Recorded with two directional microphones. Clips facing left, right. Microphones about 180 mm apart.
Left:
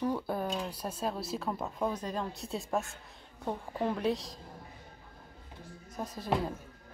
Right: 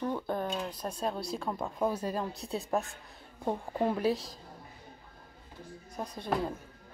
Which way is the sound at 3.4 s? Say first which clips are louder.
Right 3 dB; 20° right (ahead or behind).